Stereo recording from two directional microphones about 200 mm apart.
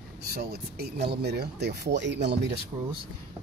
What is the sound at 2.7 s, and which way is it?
Speech, 20° right (ahead or behind).